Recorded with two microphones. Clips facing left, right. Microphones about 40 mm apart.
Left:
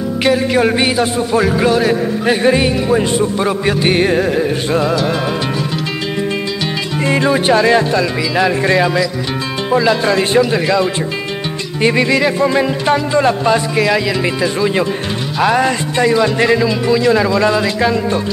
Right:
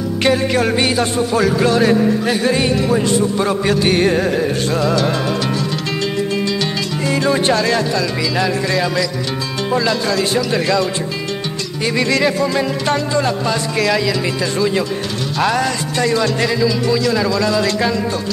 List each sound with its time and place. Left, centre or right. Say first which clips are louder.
0.2 s music: left 1 dB; centre
0.6 s speech: left 3 dB; centre
7.2 s speech: left 4 dB; centre
10.0 s speech: left 5 dB; left
10.5 s speech: left 2 dB; centre
12.4 s speech: left 3 dB; left
13.7 s speech: left 2 dB; centre
15.3 s music: left 3 dB; centre
15.6 s speech: left 4 dB; centre
17.6 s speech: left 2 dB; centre